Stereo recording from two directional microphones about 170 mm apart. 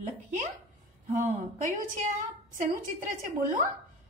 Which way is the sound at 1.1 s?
45° right (ahead or behind).